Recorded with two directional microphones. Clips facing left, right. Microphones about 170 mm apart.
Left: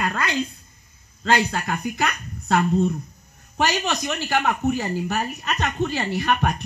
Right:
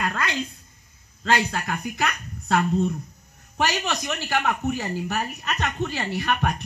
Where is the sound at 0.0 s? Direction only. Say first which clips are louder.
Left 2 dB; 35° left (ahead or behind).